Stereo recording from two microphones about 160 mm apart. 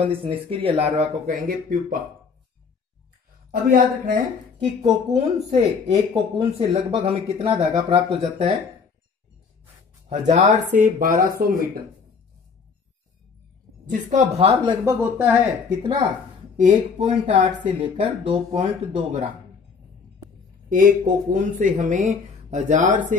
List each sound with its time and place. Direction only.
0.0 s speech: 35° right (ahead or behind); by 2.0 s 60° right (ahead or behind)
3.7 s speech: 60° right (ahead or behind)
5.1 s speech: 40° right (ahead or behind)
10.0 s speech: 45° right (ahead or behind); by 11.6 s 65° right (ahead or behind)
13.8 s speech: 50° right (ahead or behind)
14.7 s speech: 15° right (ahead or behind)
16.5 s speech: 45° right (ahead or behind)
17.7 s speech: 35° right (ahead or behind)
20.7 s speech: 55° right (ahead or behind)